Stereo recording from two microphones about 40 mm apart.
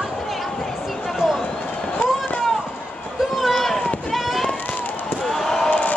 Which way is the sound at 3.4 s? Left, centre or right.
Centre.